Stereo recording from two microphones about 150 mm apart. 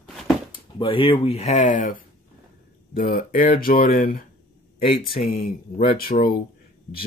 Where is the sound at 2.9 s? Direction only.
70° left (ahead or behind).